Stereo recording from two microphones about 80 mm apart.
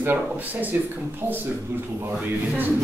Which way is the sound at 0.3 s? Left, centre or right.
Right.